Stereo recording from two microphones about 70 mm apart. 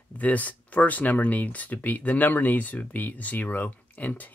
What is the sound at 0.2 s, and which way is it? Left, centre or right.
Speech, left.